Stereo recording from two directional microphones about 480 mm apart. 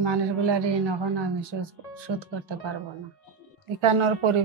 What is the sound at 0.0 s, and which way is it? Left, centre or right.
A woman's voice, right.